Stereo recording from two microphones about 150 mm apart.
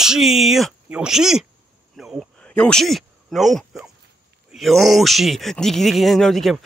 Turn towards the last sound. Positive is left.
turn(degrees=0)  # may be behind; listen again after turning